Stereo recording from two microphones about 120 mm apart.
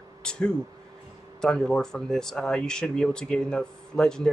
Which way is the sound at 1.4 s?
5° left (ahead or behind).